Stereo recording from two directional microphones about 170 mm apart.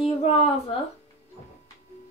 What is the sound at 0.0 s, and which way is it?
Speech, 35° left (ahead or behind).